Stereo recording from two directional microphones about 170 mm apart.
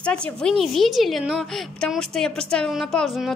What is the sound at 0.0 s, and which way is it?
A woman's voice, 5° left (ahead or behind).